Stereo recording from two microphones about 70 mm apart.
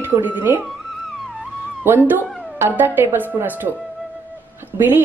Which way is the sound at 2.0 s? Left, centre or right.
Right.